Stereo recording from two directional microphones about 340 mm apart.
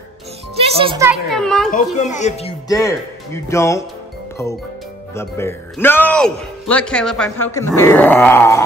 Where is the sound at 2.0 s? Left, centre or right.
Left.